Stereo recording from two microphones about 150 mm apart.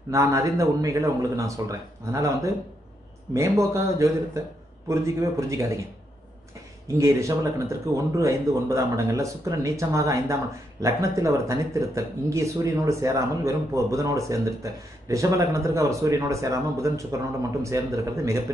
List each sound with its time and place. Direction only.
0.1 s speech: 20° right (ahead or behind)
7.0 s speech: 20° right (ahead or behind)